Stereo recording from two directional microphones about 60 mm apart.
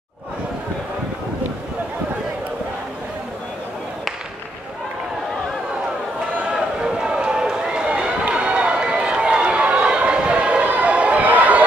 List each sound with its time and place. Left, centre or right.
6.4 s run: centre